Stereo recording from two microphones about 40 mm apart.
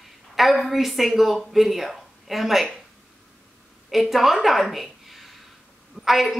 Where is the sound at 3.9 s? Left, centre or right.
Centre.